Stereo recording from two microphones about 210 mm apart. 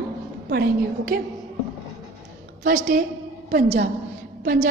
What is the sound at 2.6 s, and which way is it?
Speech, 40° right (ahead or behind).